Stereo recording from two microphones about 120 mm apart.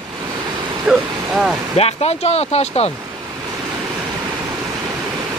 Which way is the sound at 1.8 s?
60° left (ahead or behind).